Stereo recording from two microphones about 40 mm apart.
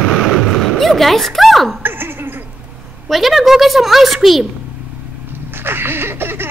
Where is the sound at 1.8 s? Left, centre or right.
Right.